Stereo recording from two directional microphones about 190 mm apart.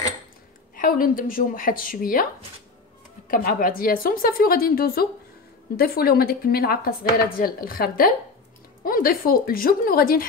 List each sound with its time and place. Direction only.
0.7 s speech: 45° left (ahead or behind)
3.3 s speech: 50° left (ahead or behind)